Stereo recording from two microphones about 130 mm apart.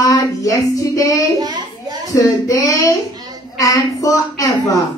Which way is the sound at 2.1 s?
25° left (ahead or behind).